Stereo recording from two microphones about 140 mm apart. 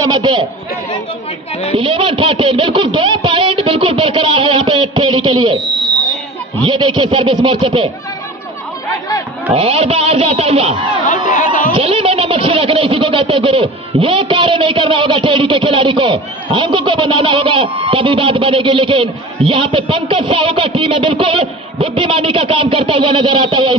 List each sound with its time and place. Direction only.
0.0 s a man's voice: 30° right (ahead or behind)
1.8 s a sound: 40° right (ahead or behind)
6.6 s speech: 35° right (ahead or behind)
9.5 s speech: 45° right (ahead or behind)
11.2 s speech: 70° left (ahead or behind)
11.7 s speech: 45° right (ahead or behind)